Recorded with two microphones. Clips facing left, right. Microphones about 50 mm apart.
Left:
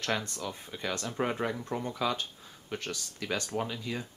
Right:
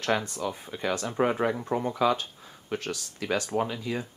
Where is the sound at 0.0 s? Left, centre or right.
Centre.